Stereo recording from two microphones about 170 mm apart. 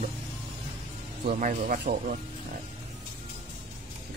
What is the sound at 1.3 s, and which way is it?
Speech, 50° right (ahead or behind).